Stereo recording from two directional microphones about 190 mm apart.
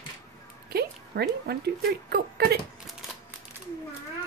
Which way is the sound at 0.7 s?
55° right (ahead or behind).